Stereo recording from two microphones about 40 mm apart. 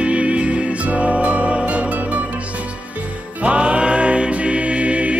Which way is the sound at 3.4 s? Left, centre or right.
Right.